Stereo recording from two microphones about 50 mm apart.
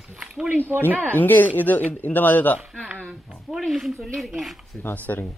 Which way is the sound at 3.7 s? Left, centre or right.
Centre.